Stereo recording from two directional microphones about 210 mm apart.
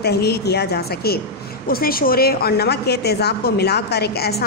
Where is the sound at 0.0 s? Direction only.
50° left (ahead or behind).